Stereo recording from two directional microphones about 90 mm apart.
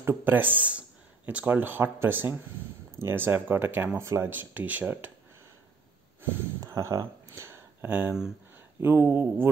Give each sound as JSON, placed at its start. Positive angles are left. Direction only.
{"t": 0.0, "sound": "speech", "side_deg": -25}
{"t": 6.6, "sound": "speech", "side_deg": -40}
{"t": 7.3, "sound": "a sound", "side_deg": -30}
{"t": 8.8, "sound": "speech", "side_deg": -20}